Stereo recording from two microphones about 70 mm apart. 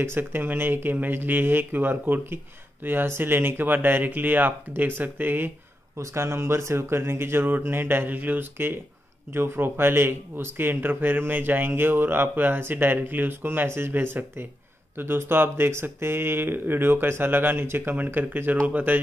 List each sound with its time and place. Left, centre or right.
0.0 s speech: right